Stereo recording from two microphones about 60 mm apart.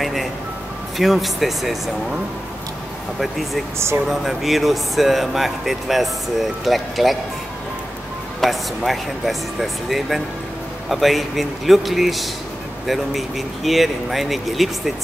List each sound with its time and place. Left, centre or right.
0.0 s music: centre
0.9 s speech: centre
3.2 s speech: centre
3.7 s speech: right
4.1 s speech: centre
8.4 s speech: centre